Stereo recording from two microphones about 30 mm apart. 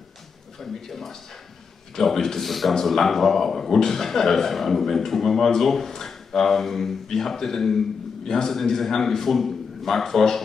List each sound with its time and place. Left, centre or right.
0.6 s a man's voice: centre
8.5 s a man's voice: centre